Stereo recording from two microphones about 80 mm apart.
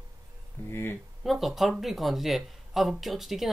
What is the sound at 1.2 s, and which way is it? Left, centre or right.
Speech, centre.